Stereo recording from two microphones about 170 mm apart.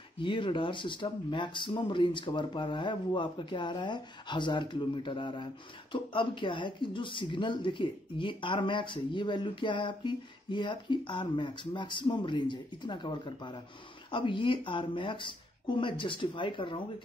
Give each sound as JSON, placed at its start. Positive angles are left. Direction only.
{"t": 0.2, "sound": "speech", "side_deg": 30}